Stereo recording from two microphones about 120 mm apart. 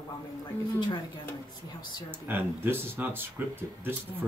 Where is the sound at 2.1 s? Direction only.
15° right (ahead or behind).